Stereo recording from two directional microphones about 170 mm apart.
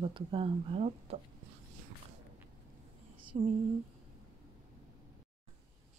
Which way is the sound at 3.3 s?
35° right (ahead or behind).